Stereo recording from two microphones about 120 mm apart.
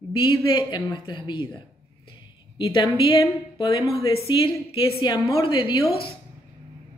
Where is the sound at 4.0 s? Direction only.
50° left (ahead or behind).